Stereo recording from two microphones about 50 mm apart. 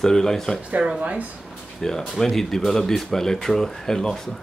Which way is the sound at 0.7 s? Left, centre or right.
Right.